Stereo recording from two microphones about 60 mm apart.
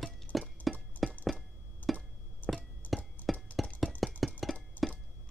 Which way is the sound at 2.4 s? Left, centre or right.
Left.